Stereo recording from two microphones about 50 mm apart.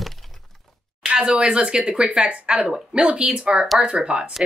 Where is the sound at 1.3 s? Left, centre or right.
Centre.